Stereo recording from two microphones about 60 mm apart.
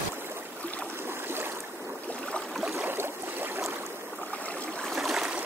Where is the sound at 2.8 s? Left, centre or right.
Right.